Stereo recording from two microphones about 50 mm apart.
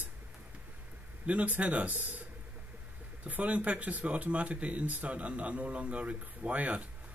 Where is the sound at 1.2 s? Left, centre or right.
Right.